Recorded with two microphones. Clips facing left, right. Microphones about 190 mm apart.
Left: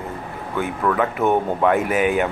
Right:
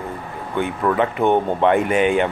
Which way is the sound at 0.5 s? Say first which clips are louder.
Right 2 dB; 20° right (ahead or behind).